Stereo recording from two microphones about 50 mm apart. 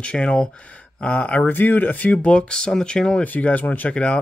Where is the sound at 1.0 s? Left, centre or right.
Left.